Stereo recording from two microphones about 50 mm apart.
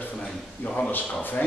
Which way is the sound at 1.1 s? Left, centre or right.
Left.